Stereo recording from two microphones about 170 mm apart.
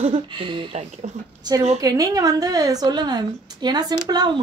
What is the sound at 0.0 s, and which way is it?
Speech, 30° right (ahead or behind).